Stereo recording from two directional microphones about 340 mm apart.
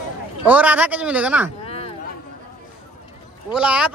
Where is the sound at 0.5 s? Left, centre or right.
Centre.